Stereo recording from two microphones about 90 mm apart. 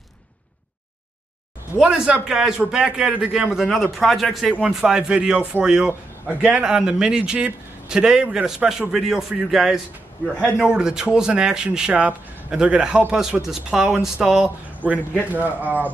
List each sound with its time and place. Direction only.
1.8 s a man's voice: 10° right (ahead or behind)